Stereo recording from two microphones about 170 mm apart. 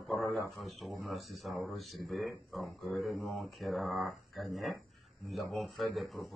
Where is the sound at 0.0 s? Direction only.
Centre (ahead or behind).